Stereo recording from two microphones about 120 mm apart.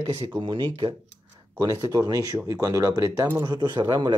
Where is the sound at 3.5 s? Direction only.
35° right (ahead or behind).